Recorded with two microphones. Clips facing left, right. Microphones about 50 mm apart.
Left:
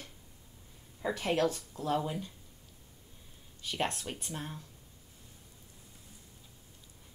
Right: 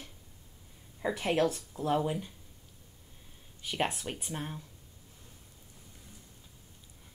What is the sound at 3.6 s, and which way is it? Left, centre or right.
Speech, centre.